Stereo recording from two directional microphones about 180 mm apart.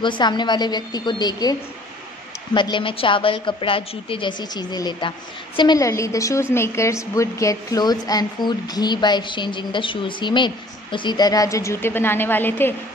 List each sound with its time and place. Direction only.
0.0 s a woman's voice: 25° left (ahead or behind)